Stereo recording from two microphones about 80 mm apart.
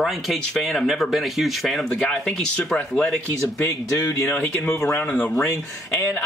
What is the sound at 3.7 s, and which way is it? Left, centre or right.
Speech, left.